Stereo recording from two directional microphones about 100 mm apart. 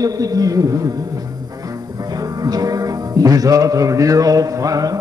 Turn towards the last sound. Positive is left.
turn(degrees=-35)  # may be behind; listen again after turning